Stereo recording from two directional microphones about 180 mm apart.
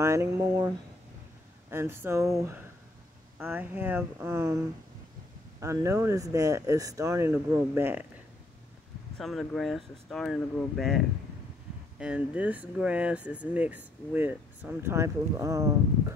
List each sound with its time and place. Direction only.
0.0 s speech: 15° right (ahead or behind)
9.2 s speech: centre (ahead or behind)
12.0 s speech: 5° right (ahead or behind)